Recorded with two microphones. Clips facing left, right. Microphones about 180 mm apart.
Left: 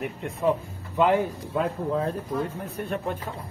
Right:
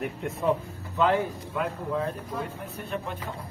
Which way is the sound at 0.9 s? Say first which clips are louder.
Left 2 dB; 15° left (ahead or behind).